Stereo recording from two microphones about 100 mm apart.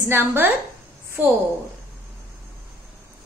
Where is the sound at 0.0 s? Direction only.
20° right (ahead or behind).